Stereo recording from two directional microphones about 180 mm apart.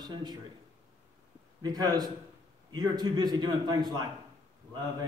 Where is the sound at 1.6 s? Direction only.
20° right (ahead or behind).